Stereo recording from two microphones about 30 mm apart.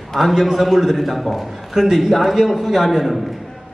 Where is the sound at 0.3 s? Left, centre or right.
Centre.